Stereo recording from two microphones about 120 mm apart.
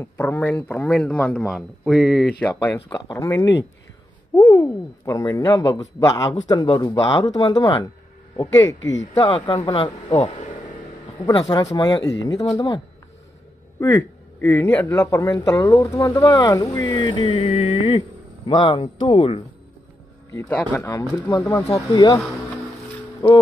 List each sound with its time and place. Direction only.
0.0 s speech: 20° left (ahead or behind)
1.5 s speech: centre (ahead or behind)
2.6 s speech: 25° left (ahead or behind)
8.6 s speech: 25° left (ahead or behind)
9.2 s speech: 45° left (ahead or behind)
13.7 s a man's voice: 25° left (ahead or behind); by 18.0 s 50° left (ahead or behind)
18.5 s speech: 40° left (ahead or behind)
20.3 s speech: 15° left (ahead or behind)
21.7 s speech: 30° left (ahead or behind)
23.2 s speech: 35° left (ahead or behind)